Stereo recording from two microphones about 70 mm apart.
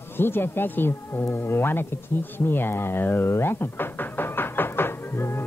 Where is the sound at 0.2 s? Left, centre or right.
Left.